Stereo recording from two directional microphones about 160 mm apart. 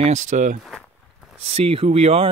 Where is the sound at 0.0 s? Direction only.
50° right (ahead or behind).